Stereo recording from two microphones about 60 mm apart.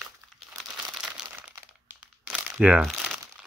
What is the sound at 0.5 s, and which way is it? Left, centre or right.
Crumpling, centre.